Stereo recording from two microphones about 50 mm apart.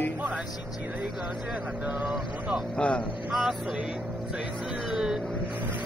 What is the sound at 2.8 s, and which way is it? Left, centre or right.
Speech, left.